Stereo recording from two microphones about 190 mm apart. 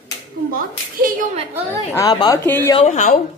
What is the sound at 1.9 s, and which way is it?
Speech, 20° left (ahead or behind).